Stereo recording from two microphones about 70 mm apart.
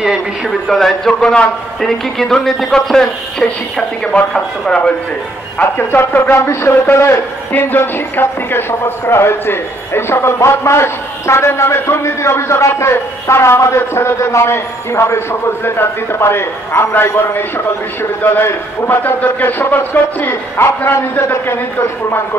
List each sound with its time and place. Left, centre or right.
0.7 s a man's voice: centre
5.6 s speech: left